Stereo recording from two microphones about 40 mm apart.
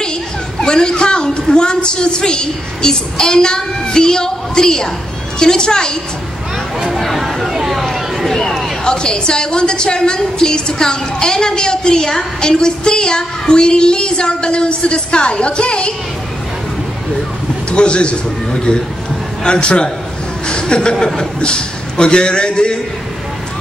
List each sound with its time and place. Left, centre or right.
0.6 s a woman's voice: centre
6.9 s a sound: centre
8.8 s a woman's voice: left
17.6 s a man's voice: left